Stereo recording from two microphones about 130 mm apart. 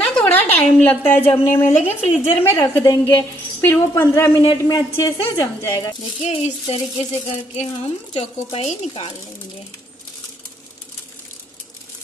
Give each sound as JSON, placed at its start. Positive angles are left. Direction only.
{"t": 0.0, "sound": "a woman's voice", "side_deg": 10}
{"t": 4.5, "sound": "a woman's voice", "side_deg": 30}
{"t": 6.2, "sound": "speech", "side_deg": 55}